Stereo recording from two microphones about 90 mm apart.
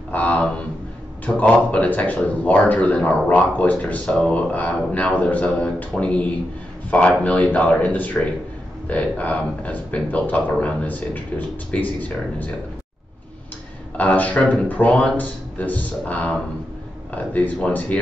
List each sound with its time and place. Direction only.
0.1 s a sound: 15° left (ahead or behind)
1.2 s speech: 15° left (ahead or behind)
13.9 s speech: 20° left (ahead or behind)